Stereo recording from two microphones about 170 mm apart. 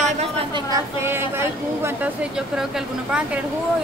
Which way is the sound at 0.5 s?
20° right (ahead or behind).